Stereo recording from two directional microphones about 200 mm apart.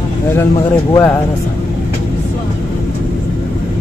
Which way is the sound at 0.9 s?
10° left (ahead or behind).